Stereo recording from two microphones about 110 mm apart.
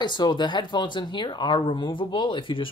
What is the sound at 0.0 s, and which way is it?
Speech, 45° left (ahead or behind).